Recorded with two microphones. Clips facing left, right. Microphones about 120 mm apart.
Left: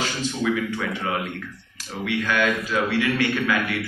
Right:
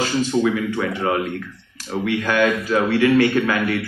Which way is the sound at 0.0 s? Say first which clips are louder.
Right 6 dB; 40° right (ahead or behind).